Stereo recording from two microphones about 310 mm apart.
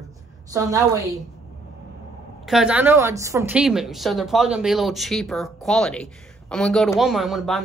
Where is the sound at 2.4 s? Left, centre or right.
Centre.